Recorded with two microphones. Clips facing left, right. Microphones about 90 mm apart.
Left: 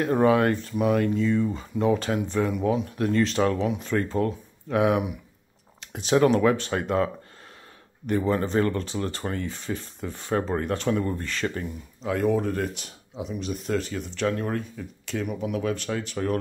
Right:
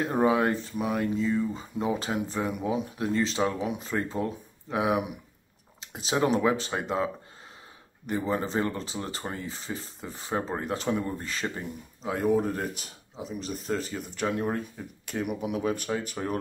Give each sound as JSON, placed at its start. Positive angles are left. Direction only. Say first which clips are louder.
{"t": 0.0, "sound": "speech", "louder": "left 4 dB", "side_deg": -10}
{"t": 0.6, "sound": "speech", "louder": "left 6 dB", "side_deg": 0}
{"t": 6.1, "sound": "speech", "louder": "left 5 dB", "side_deg": -10}
{"t": 8.1, "sound": "speech", "louder": "left 4 dB", "side_deg": -10}
{"t": 10.0, "sound": "speech", "louder": "left 5 dB", "side_deg": 0}
{"t": 10.9, "sound": "speech", "louder": "left 3 dB", "side_deg": -15}
{"t": 12.7, "sound": "speech", "louder": "left 5 dB", "side_deg": 0}